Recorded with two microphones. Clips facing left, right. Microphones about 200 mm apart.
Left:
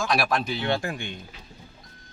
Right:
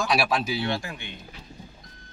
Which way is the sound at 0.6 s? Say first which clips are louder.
Left 3 dB; 50° left (ahead or behind).